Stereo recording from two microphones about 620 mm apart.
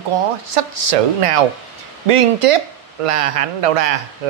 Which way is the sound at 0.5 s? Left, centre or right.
Right.